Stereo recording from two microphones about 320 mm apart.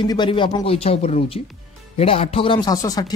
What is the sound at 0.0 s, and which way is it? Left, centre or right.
Speech, centre.